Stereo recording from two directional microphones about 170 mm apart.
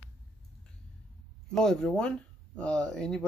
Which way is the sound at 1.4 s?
5° left (ahead or behind).